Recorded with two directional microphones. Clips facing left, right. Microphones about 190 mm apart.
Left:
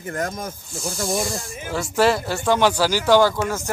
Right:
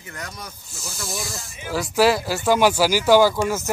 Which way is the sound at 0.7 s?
30° left (ahead or behind).